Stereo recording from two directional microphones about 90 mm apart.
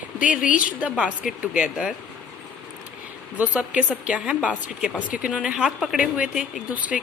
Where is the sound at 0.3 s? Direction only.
15° right (ahead or behind).